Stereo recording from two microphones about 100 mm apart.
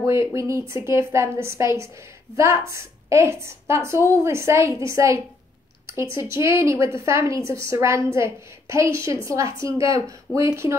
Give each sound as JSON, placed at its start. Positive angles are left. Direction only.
{"t": 0.0, "sound": "a woman's voice", "side_deg": -30}